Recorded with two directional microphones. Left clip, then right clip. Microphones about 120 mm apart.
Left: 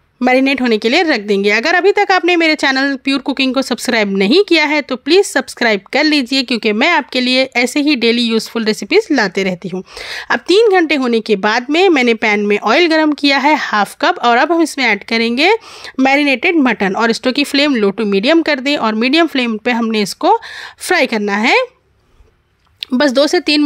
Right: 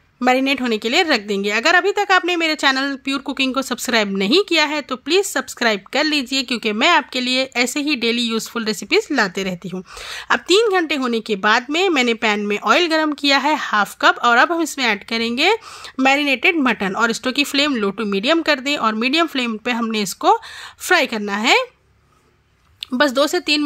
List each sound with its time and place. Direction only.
0.2 s speech: 50° left (ahead or behind)
22.9 s speech: 45° left (ahead or behind)